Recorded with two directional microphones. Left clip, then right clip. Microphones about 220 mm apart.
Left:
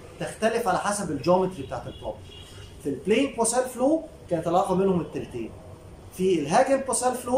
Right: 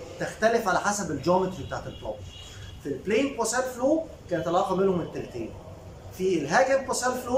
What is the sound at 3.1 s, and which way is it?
A man's voice, 15° left (ahead or behind).